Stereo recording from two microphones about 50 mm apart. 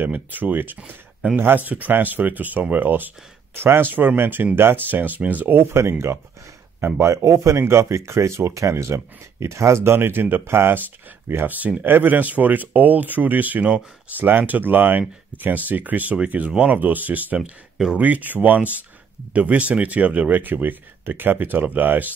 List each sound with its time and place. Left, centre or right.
0.3 s speech: right
3.5 s speech: right
5.5 s speech: right
9.9 s speech: right
11.4 s speech: right